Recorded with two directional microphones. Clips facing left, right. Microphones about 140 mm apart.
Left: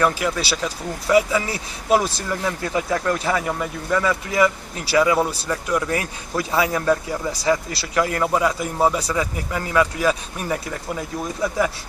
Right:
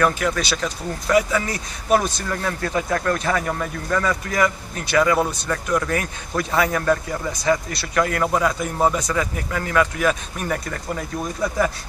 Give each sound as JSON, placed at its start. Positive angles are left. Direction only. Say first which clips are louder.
{"t": 0.0, "sound": "speech", "louder": "even", "side_deg": 10}
{"t": 8.2, "sound": "speech", "louder": "even", "side_deg": 10}